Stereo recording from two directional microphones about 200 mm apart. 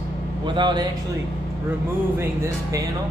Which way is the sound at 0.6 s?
25° right (ahead or behind).